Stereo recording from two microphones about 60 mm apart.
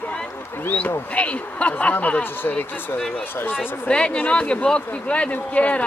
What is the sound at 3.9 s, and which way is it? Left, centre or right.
Speech, centre.